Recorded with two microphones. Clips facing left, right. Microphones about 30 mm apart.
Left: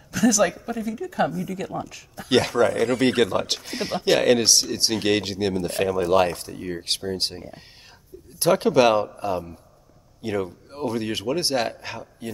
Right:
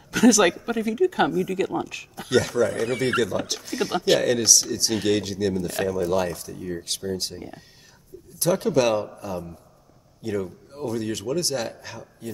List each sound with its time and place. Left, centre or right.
0.1 s speech: right
2.2 s speech: left